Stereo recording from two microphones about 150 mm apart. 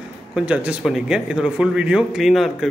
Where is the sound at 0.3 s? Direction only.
10° right (ahead or behind).